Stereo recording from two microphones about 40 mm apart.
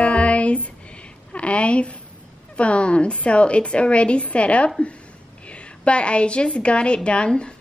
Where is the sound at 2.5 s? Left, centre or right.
Left.